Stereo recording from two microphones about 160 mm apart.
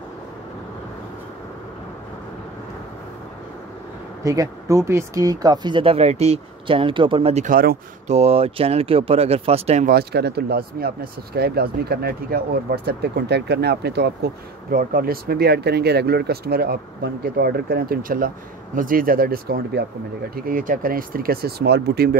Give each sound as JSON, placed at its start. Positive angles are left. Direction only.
{"t": 4.2, "sound": "speech", "side_deg": -20}
{"t": 7.4, "sound": "speech", "side_deg": -65}
{"t": 8.1, "sound": "speech", "side_deg": -40}
{"t": 9.8, "sound": "speech", "side_deg": -85}